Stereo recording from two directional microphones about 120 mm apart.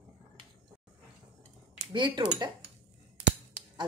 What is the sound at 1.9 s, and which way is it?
Speech, 40° right (ahead or behind).